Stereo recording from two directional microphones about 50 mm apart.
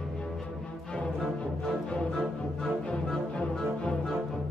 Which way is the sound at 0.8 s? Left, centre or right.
Left.